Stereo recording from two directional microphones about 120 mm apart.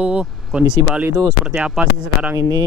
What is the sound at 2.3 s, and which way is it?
Speech, 30° right (ahead or behind).